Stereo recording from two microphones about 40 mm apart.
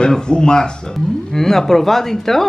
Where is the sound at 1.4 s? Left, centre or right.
Centre.